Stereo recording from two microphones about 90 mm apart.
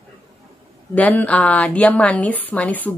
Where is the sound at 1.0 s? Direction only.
15° left (ahead or behind).